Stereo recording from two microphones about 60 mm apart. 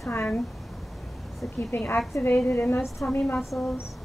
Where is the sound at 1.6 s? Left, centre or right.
Left.